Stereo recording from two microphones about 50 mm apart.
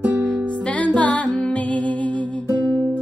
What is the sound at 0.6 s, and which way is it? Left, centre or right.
Music, left.